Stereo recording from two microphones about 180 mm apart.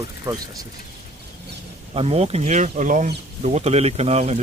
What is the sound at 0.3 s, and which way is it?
Speech, 20° right (ahead or behind).